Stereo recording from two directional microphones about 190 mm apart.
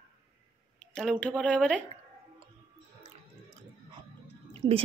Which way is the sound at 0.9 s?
5° left (ahead or behind).